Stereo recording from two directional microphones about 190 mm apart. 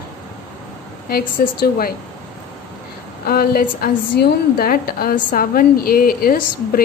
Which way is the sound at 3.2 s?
55° left (ahead or behind).